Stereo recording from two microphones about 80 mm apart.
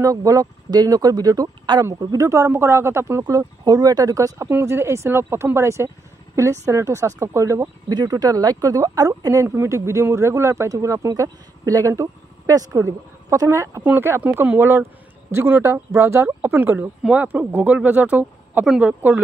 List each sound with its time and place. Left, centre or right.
0.0 s speech: right
2.2 s speech: right
3.3 s speech: right
4.5 s speech: right
7.6 s speech: right
9.5 s speech: right
13.8 s speech: right